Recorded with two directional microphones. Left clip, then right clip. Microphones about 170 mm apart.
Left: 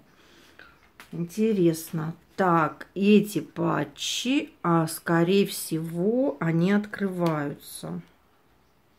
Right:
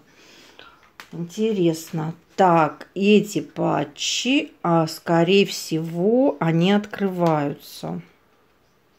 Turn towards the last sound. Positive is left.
turn(degrees=-20)  # may be behind; listen again after turning